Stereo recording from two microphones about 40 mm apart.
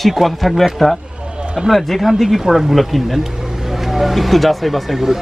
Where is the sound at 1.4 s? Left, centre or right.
Right.